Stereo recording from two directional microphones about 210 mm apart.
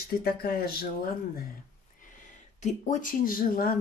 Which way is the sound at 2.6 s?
40° left (ahead or behind).